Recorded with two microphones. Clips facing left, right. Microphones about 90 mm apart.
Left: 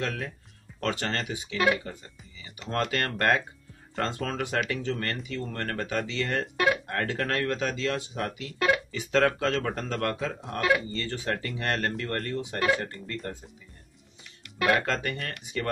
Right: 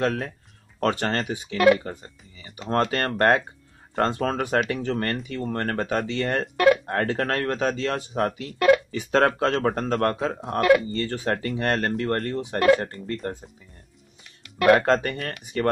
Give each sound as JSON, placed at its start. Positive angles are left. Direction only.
{"t": 0.0, "sound": "speech", "side_deg": -35}
{"t": 14.7, "sound": "speech", "side_deg": -40}